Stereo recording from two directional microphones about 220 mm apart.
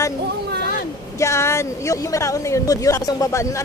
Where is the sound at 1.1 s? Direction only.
15° left (ahead or behind).